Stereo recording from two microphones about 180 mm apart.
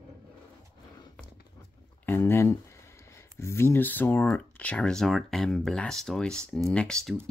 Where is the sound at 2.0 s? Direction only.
10° left (ahead or behind).